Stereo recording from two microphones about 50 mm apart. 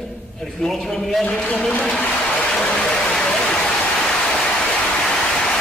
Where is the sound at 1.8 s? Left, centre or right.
Left.